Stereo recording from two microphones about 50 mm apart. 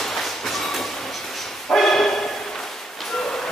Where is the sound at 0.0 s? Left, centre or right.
Centre.